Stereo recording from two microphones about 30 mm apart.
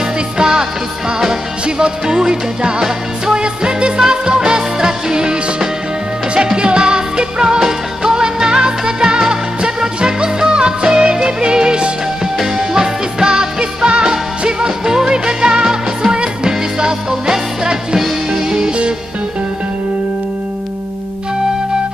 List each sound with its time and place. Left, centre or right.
0.4 s music: right
1.8 s music: right
12.4 s music: centre
14.9 s music: right
17.9 s music: centre